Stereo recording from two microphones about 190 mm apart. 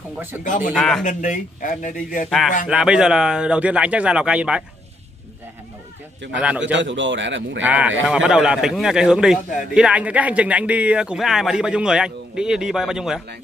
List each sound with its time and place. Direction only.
0.4 s a man's voice: 40° left (ahead or behind)
0.7 s a man's voice: centre (ahead or behind)
1.0 s a man's voice: 40° left (ahead or behind)
2.2 s a man's voice: centre (ahead or behind)
6.2 s a man's voice: 70° right (ahead or behind)
7.6 s a man's voice: 10° right (ahead or behind)